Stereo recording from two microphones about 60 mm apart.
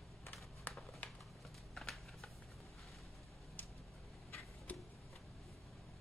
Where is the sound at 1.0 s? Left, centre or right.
Left.